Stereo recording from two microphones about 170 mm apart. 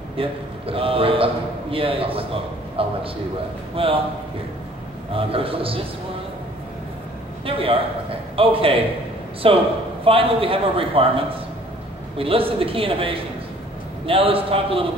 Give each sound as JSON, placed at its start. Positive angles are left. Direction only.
{"t": 0.2, "sound": "a man's voice", "side_deg": -35}
{"t": 5.1, "sound": "a man's voice", "side_deg": -35}
{"t": 7.4, "sound": "a man's voice", "side_deg": -35}